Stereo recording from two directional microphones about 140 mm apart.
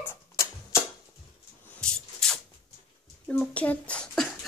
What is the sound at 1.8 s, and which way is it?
Music, 5° left (ahead or behind).